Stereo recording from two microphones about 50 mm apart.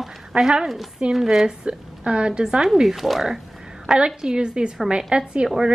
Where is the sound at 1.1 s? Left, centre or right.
Centre.